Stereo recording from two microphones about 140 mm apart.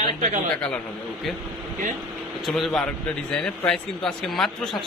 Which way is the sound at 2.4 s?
Centre (ahead or behind).